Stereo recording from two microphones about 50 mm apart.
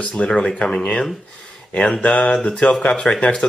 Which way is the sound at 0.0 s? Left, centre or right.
Left.